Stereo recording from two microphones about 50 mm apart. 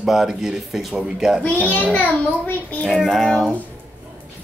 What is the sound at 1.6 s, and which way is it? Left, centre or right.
Speech, left.